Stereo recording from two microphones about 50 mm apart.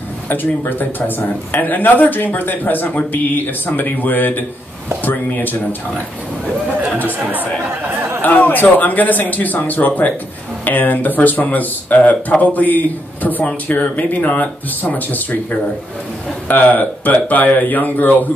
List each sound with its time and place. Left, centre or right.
0.3 s speech: left
7.1 s speech: right
8.2 s speech: left
16.4 s speech: left